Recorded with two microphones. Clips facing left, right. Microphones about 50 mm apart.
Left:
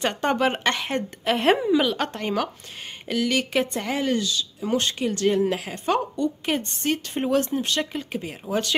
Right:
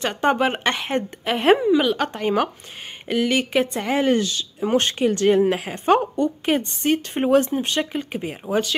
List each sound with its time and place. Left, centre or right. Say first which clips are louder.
0.1 s a woman's voice: right 3 dB; centre
3.1 s a woman's voice: right 3 dB; centre
4.0 s a woman's voice: right 5 dB; right; by 8.6 s centre